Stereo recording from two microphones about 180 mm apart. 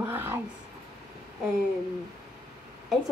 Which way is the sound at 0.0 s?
10° right (ahead or behind).